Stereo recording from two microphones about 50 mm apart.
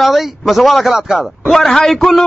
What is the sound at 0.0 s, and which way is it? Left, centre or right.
A man's voice, centre.